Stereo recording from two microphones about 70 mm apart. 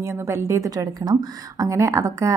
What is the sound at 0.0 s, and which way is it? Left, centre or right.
A woman's voice, right.